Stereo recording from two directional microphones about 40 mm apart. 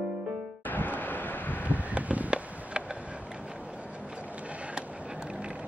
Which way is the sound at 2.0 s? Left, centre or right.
Right.